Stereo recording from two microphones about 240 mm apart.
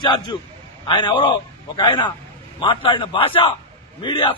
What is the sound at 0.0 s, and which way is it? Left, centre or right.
A man's voice, centre.